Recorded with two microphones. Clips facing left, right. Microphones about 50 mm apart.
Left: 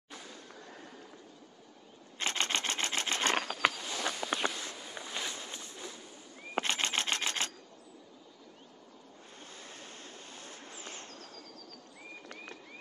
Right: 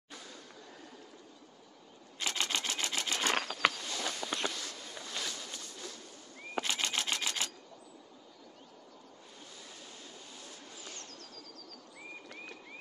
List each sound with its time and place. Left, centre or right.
2.1 s camera: left
3.3 s walk: centre; by 5.9 s left
6.5 s camera: left
9.6 s a sound: left